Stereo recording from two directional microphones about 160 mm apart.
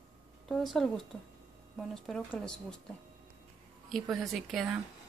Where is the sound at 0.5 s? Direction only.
Centre (ahead or behind).